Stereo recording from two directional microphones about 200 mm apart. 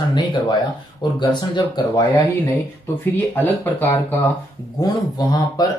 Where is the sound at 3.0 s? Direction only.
10° left (ahead or behind).